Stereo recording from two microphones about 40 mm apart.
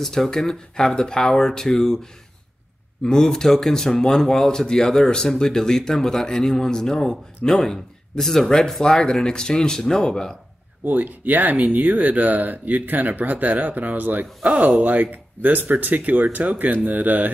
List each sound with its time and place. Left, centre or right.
0.0 s speech: centre
3.0 s speech: centre
10.9 s speech: right
14.4 s speech: right
14.8 s speech: right